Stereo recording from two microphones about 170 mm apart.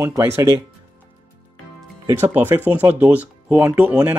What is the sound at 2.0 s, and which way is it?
Speech, 15° right (ahead or behind).